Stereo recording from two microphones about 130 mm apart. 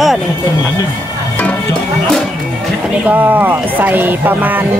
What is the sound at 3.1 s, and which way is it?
Speech, 15° right (ahead or behind).